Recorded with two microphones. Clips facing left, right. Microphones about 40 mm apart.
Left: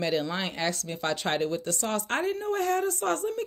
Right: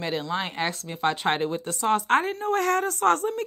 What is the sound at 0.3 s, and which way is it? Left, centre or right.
Speech, right.